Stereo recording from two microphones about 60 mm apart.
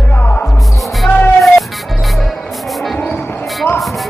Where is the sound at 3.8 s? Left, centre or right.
Centre.